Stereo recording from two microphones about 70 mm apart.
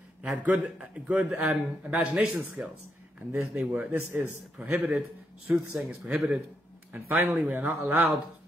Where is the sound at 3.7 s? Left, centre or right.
Right.